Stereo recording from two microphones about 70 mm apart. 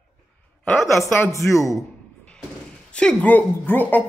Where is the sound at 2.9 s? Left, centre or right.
Centre.